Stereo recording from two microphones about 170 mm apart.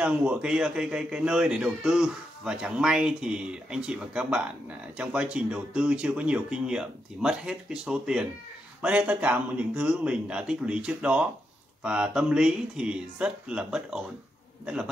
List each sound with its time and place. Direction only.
0.0 s a man's voice: 5° right (ahead or behind)